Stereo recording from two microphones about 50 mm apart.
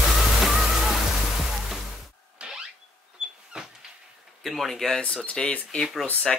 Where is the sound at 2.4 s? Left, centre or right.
Right.